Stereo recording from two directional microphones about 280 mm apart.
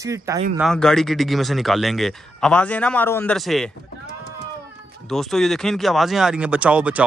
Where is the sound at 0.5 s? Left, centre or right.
Centre.